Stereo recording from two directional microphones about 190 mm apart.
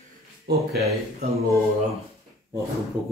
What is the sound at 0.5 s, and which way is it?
Speech, 60° right (ahead or behind).